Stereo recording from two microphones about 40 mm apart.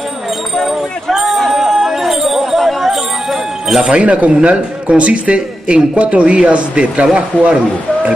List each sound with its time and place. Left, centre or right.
1.1 s a sound: centre
3.8 s a man's voice: right
7.3 s speech: left